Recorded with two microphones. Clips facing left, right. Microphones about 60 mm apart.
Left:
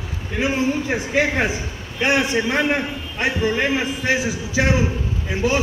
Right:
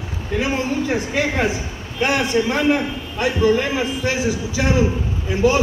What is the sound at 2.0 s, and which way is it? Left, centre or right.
A man's voice, left.